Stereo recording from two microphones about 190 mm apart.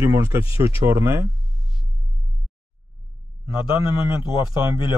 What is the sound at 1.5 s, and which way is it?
Music, centre (ahead or behind).